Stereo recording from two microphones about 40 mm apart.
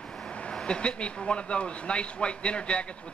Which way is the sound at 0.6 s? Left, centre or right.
Left.